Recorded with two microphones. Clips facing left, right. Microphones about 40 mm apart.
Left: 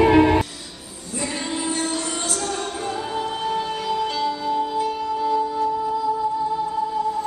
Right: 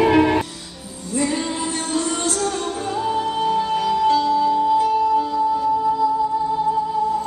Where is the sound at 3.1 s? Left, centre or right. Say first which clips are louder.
Right 4 dB; centre.